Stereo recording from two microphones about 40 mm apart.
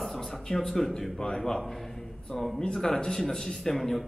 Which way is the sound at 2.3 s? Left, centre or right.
Centre.